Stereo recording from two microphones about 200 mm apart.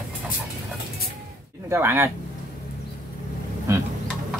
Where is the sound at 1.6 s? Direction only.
10° right (ahead or behind).